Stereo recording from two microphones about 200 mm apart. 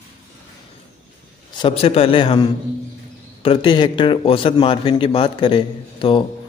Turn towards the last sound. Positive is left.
turn(degrees=25)  # may be behind; listen again after turning